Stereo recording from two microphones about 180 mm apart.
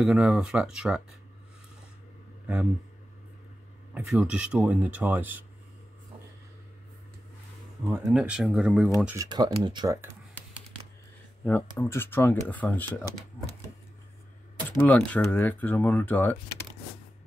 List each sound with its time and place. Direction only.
0.0 s speech: 5° right (ahead or behind)
2.4 s speech: 10° right (ahead or behind)
3.9 s speech: 5° right (ahead or behind)
8.1 s speech: 5° right (ahead or behind)
9.0 s speech: 15° right (ahead or behind)
11.4 s speech: 10° left (ahead or behind)
14.9 s speech: 10° left (ahead or behind)